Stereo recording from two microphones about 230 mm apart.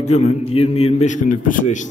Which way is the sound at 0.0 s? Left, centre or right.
Left.